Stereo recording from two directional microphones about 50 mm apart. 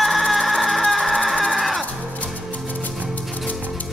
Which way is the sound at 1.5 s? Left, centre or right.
Centre.